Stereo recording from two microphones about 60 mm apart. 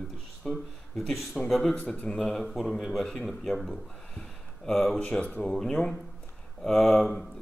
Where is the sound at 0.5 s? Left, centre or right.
Centre.